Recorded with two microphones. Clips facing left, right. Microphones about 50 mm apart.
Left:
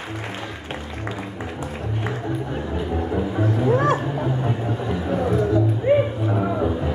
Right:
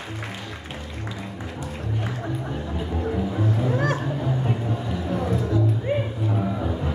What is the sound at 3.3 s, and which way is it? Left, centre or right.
Music, left.